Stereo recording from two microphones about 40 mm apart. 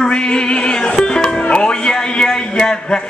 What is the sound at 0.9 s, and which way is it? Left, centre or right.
Music, left.